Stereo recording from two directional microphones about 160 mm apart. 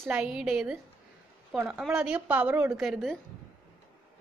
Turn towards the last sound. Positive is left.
turn(degrees=-5)  # may be behind; listen again after turning